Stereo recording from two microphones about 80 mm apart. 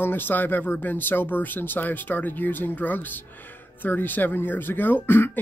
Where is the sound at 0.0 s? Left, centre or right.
Left.